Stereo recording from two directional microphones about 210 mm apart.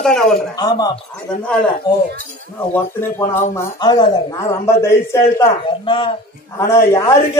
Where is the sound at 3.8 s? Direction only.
20° left (ahead or behind).